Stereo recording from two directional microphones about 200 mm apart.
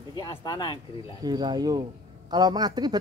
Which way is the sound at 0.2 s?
20° left (ahead or behind).